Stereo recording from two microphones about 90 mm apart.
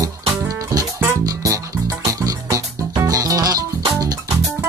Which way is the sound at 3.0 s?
40° right (ahead or behind).